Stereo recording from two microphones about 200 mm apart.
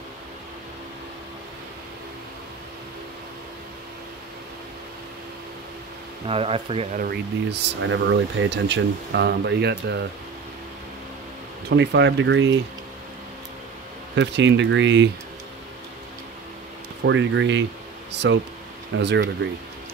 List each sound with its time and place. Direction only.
6.2 s speech: 30° right (ahead or behind)
7.0 s speech: 55° right (ahead or behind)
11.7 s speech: 60° right (ahead or behind)
14.1 s speech: 60° right (ahead or behind)
17.0 s speech: 65° right (ahead or behind)